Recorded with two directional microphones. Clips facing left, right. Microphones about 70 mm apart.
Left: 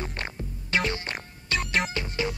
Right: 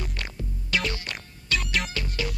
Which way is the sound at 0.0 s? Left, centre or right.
Left.